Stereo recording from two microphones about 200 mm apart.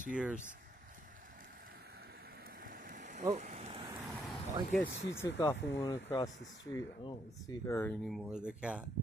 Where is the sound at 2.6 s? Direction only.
45° right (ahead or behind); by 3.9 s 25° right (ahead or behind).